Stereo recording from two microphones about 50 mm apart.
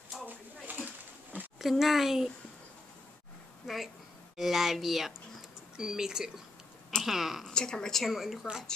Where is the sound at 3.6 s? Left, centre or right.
Centre.